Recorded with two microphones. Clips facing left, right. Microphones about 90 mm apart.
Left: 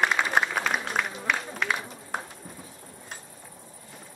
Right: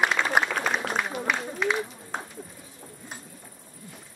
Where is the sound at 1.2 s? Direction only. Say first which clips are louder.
Right 1 dB; 5° right (ahead or behind).